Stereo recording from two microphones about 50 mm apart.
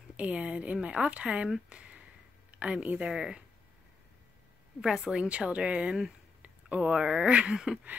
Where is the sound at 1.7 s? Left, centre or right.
Right.